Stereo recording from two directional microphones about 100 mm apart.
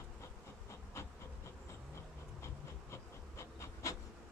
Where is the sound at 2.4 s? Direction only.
30° left (ahead or behind).